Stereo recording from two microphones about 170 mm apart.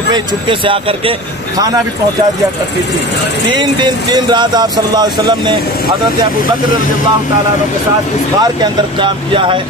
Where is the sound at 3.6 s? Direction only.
25° right (ahead or behind).